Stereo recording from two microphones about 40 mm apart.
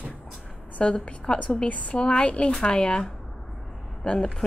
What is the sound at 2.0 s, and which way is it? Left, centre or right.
A woman's voice, left.